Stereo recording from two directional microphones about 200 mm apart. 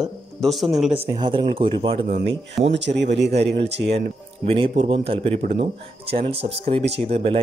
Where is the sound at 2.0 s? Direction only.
55° right (ahead or behind).